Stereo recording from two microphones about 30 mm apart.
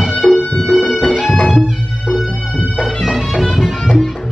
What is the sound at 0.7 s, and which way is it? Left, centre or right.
Music, centre.